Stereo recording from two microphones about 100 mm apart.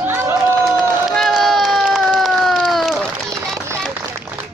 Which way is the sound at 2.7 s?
Centre (ahead or behind).